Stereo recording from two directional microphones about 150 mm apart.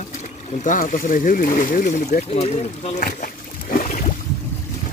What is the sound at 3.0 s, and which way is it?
Boat, 70° left (ahead or behind).